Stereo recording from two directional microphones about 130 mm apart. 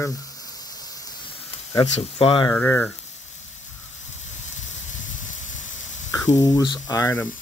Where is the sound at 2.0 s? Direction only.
45° left (ahead or behind).